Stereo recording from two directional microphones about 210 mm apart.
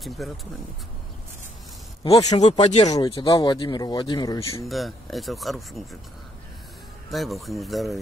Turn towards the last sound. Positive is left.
turn(degrees=0)  # may be behind; listen again after turning